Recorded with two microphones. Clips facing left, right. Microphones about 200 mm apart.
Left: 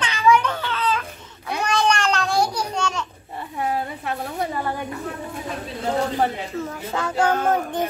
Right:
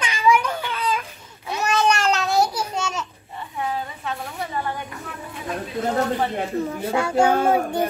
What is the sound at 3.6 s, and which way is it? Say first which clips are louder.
Speech: left 3 dB; 40° left (ahead or behind).